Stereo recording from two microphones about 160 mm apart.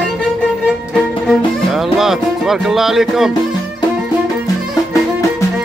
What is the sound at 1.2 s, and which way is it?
Music, centre (ahead or behind).